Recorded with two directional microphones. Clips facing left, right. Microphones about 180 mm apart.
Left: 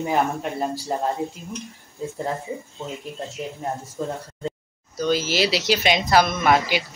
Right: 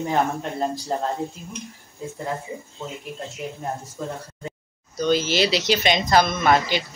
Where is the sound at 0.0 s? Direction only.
10° left (ahead or behind).